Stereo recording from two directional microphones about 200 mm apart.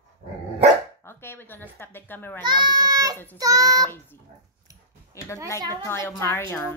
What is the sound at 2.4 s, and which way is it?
Speech, 20° right (ahead or behind).